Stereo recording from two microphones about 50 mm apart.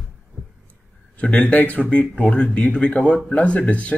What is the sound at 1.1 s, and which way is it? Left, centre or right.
Speech, left.